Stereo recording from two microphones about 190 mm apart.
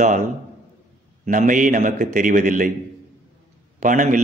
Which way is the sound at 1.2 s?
45° right (ahead or behind).